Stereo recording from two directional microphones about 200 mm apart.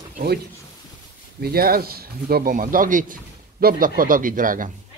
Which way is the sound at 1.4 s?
50° right (ahead or behind).